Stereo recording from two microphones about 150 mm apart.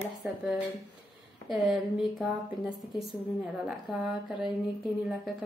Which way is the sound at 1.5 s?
5° right (ahead or behind).